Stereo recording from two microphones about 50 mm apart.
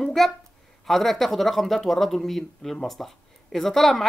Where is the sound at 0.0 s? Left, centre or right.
Centre.